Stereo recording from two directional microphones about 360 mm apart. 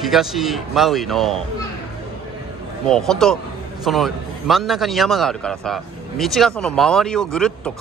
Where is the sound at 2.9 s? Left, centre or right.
Centre.